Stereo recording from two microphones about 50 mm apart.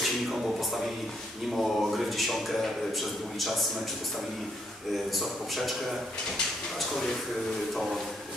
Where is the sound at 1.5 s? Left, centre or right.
Centre.